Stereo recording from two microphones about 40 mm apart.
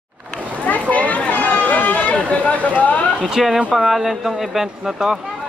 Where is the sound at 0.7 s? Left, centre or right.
Left.